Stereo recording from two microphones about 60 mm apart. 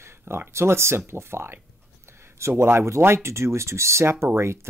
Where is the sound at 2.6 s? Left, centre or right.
Right.